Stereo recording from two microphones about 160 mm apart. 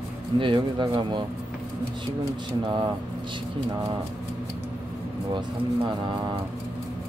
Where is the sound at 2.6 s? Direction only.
25° right (ahead or behind).